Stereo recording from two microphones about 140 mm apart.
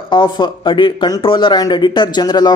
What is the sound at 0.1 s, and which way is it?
Speech, 35° left (ahead or behind).